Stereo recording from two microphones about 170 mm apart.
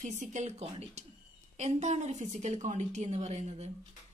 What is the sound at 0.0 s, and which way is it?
Speech, 45° right (ahead or behind).